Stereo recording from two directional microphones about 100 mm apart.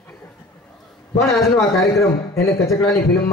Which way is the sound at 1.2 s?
Centre (ahead or behind).